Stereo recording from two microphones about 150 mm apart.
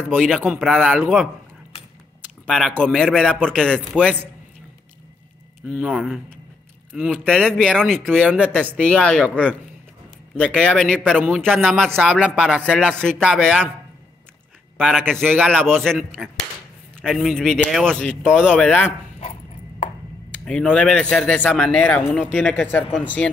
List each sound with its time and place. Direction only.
0.6 s speech: 5° left (ahead or behind)
2.4 s speech: 5° left (ahead or behind)
5.7 s speech: 5° right (ahead or behind)
8.3 s speech: 10° right (ahead or behind)
8.8 s speech: 5° left (ahead or behind)
10.3 s speech: 5° left (ahead or behind)
14.8 s speech: centre (ahead or behind)
18.9 s dog: 45° left (ahead or behind)
20.3 s speech: 10° left (ahead or behind)